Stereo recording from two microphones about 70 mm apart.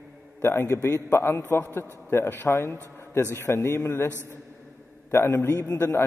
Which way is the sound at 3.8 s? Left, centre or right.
Left.